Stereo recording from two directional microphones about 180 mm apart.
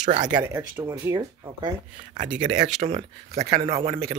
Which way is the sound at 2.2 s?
45° right (ahead or behind).